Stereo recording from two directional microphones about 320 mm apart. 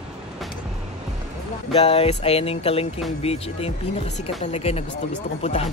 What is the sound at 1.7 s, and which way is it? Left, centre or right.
Speech, centre.